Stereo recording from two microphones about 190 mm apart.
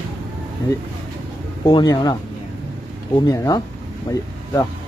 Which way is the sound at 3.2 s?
20° left (ahead or behind).